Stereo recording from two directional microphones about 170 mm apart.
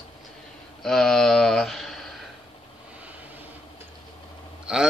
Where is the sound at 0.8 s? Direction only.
Centre (ahead or behind).